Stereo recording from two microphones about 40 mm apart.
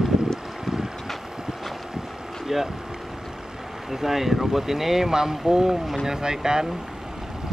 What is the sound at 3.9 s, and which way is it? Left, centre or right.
Speech, centre.